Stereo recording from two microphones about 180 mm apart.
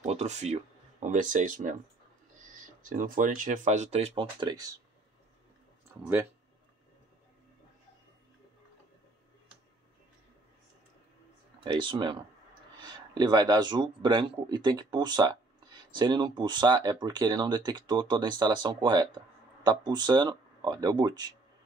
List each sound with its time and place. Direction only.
0.0 s speech: 35° right (ahead or behind)
2.8 s speech: 45° right (ahead or behind); by 4.7 s 20° right (ahead or behind)
11.6 s speech: 25° right (ahead or behind)